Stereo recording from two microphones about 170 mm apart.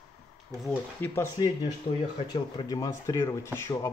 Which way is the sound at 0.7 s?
15° left (ahead or behind).